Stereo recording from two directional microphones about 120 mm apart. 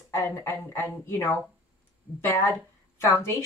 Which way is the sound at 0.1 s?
20° left (ahead or behind).